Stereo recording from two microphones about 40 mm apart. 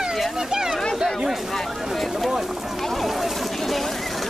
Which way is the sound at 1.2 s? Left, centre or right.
Centre.